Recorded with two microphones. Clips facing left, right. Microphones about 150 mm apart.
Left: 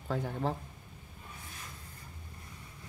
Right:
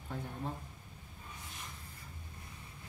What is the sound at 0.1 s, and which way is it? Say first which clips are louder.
Speech: left 8 dB; 85° left.